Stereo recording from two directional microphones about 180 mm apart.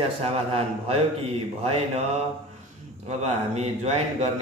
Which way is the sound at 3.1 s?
40° right (ahead or behind).